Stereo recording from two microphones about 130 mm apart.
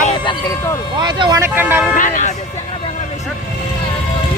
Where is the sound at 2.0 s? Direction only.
75° left (ahead or behind).